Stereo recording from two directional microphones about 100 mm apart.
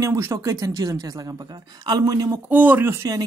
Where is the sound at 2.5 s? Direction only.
20° right (ahead or behind).